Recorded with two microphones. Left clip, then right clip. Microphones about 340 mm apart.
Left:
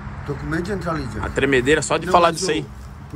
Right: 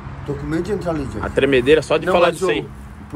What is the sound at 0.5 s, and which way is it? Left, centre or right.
Speech, centre.